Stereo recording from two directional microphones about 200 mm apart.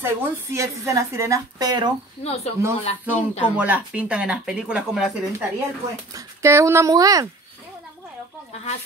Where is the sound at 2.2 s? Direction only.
30° left (ahead or behind).